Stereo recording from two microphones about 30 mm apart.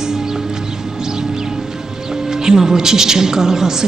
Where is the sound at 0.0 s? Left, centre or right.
Centre.